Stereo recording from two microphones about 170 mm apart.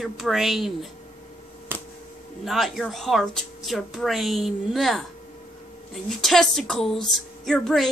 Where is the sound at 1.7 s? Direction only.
15° right (ahead or behind).